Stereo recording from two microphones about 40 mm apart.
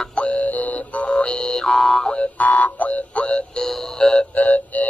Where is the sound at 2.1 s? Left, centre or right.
Left.